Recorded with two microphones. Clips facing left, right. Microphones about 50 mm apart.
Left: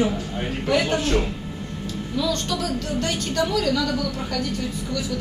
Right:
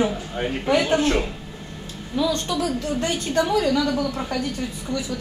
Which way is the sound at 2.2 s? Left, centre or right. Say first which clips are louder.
Right 3 dB; right.